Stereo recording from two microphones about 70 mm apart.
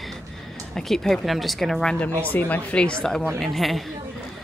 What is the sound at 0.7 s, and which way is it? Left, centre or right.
Speech, centre.